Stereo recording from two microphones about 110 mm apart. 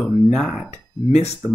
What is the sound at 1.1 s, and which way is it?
Speech, 70° left (ahead or behind).